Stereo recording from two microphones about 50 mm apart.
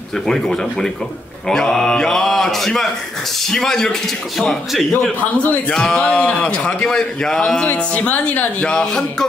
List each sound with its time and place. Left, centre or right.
0.3 s a man's voice: centre
6.0 s a man's voice: left
7.6 s speech: left
8.6 s a man's voice: centre